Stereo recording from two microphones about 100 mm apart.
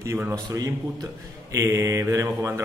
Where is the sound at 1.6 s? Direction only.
30° right (ahead or behind).